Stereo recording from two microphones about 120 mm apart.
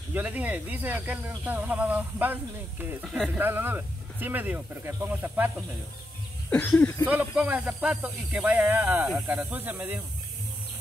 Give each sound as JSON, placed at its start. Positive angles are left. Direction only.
{"t": 0.1, "sound": "speech", "side_deg": -15}
{"t": 3.0, "sound": "speech", "side_deg": -5}
{"t": 3.3, "sound": "speech", "side_deg": -15}
{"t": 6.5, "sound": "speech", "side_deg": 10}
{"t": 7.1, "sound": "speech", "side_deg": -15}